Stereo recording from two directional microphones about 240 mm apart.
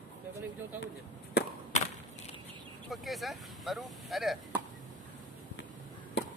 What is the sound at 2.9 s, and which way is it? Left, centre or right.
Speech, centre.